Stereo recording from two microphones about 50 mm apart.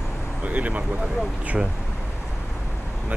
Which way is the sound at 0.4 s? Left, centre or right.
Right.